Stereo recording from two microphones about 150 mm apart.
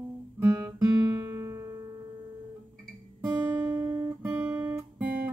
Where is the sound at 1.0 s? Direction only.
20° right (ahead or behind).